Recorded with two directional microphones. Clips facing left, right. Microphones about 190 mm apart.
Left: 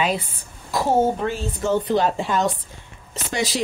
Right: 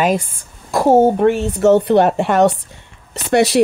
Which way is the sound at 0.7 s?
65° right (ahead or behind).